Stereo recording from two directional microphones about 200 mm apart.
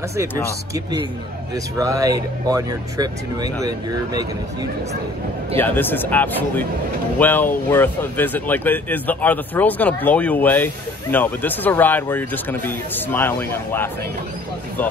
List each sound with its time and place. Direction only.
1.8 s speech: 15° right (ahead or behind)
5.6 s speech: 10° left (ahead or behind)